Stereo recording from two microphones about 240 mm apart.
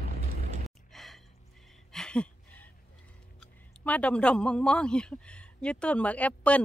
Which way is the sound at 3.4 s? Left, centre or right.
Centre.